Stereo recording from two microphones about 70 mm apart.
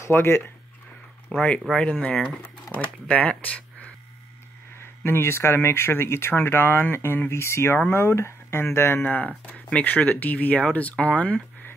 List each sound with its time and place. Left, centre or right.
0.0 s speech: left
1.3 s speech: centre
4.7 s speech: left
9.0 s speech: left